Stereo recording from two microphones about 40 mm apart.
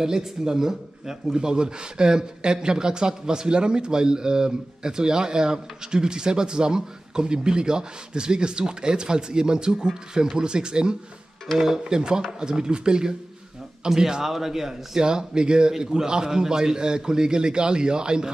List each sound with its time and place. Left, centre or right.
0.0 s speech: centre
11.5 s speech: centre
15.0 s speech: centre